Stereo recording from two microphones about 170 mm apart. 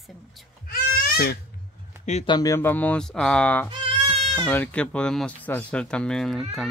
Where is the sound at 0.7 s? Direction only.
60° left (ahead or behind).